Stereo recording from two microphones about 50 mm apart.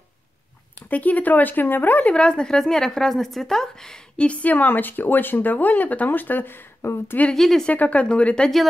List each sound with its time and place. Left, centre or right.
0.8 s speech: left
2.1 s a woman's voice: centre
4.3 s speech: left
7.3 s speech: centre
7.7 s speech: left